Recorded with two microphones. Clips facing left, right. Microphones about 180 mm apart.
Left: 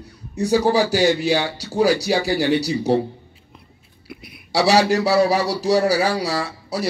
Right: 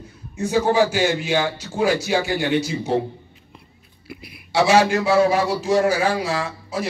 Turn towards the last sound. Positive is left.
turn(degrees=35)  # may be behind; listen again after turning